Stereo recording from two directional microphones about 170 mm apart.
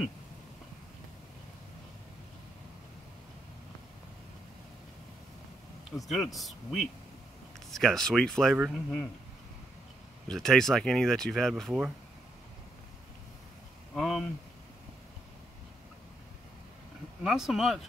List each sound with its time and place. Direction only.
5.9 s speech: centre (ahead or behind)
10.2 s speech: 5° left (ahead or behind)
13.9 s speech: centre (ahead or behind)
17.2 s speech: 5° right (ahead or behind)